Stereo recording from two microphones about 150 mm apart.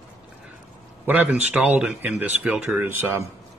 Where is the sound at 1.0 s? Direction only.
10° right (ahead or behind).